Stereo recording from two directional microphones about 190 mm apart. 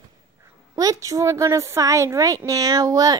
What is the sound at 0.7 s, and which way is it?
A child's voice, 20° right (ahead or behind).